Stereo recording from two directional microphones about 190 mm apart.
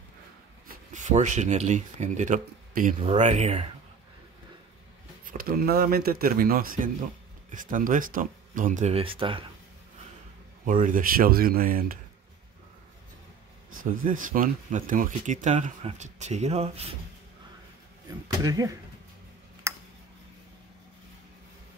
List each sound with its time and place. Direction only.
0.7 s speech: 40° right (ahead or behind)
5.2 s speech: 50° right (ahead or behind); by 9.5 s 25° right (ahead or behind)
10.6 s speech: 45° right (ahead or behind)
13.7 s speech: 45° right (ahead or behind)
18.1 s speech: 20° right (ahead or behind)
19.7 s a sound: 15° right (ahead or behind)